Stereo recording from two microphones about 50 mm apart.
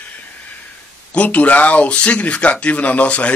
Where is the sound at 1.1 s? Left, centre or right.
Left.